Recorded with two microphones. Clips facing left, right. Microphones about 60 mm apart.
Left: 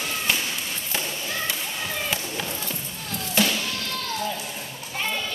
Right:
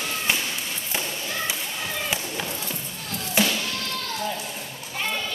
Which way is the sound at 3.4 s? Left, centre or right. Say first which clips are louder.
Even; centre.